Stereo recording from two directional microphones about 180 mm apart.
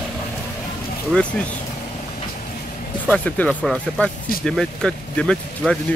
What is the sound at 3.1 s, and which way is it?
Speech, 5° left (ahead or behind).